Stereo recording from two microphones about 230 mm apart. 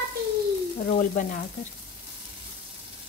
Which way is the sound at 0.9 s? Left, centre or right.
Left.